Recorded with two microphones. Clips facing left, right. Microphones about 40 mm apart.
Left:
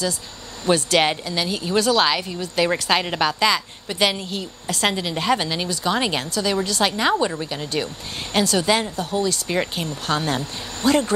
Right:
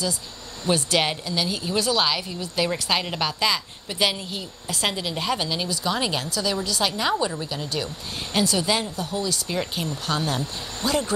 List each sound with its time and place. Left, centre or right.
0.7 s a woman's voice: left
1.0 s a woman's voice: left